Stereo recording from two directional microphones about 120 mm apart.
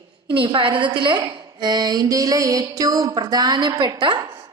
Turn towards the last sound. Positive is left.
turn(degrees=-40)  # may be behind; listen again after turning